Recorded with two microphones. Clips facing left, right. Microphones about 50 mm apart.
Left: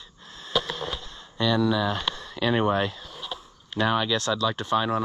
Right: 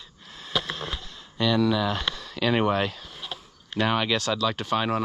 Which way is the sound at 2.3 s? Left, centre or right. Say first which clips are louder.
Even; right.